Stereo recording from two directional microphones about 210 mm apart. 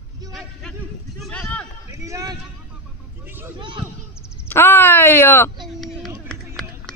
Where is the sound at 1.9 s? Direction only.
15° right (ahead or behind).